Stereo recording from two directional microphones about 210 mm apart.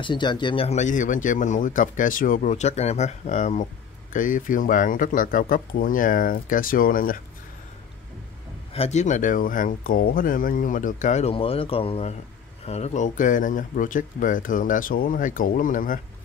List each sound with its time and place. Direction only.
0.0 s speech: 20° left (ahead or behind); by 7.2 s 40° left (ahead or behind)
8.7 s speech: 30° left (ahead or behind)